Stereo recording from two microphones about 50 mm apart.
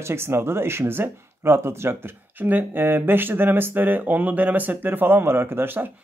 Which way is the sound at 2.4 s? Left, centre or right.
Right.